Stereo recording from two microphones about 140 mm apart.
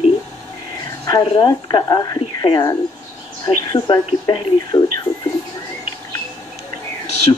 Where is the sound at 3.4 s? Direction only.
30° left (ahead or behind).